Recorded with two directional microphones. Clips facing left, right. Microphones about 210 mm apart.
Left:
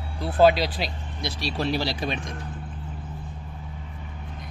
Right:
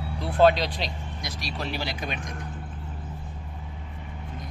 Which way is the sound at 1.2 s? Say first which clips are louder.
Left 7 dB; 35° left (ahead or behind).